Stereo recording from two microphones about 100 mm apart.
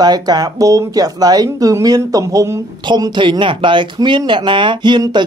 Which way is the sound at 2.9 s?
50° right (ahead or behind).